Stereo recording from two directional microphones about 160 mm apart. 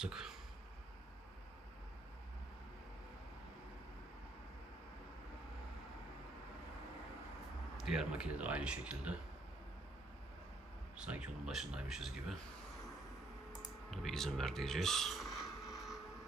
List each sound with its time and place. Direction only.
0.0 s speech: 5° right (ahead or behind)
7.7 s speech: 5° right (ahead or behind)
11.0 s speech: 5° right (ahead or behind)
13.8 s speech: centre (ahead or behind)